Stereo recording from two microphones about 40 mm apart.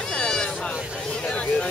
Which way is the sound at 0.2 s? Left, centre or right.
Centre.